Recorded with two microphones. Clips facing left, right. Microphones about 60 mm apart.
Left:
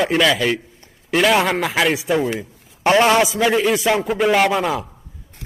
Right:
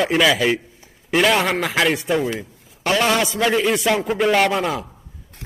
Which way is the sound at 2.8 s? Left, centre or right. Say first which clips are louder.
Left 4 dB; left.